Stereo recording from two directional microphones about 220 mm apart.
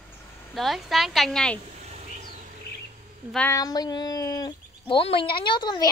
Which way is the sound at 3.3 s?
10° left (ahead or behind).